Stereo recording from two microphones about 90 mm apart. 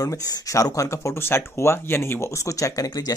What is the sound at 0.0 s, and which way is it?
Speech, 35° left (ahead or behind).